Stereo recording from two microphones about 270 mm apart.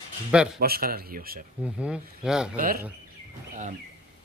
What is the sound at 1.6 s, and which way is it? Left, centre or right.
Speech, centre.